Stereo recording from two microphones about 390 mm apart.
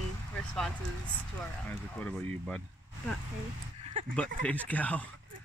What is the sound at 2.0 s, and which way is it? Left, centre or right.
Speech, centre.